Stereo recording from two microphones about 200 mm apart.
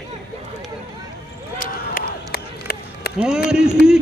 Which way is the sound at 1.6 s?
45° left (ahead or behind).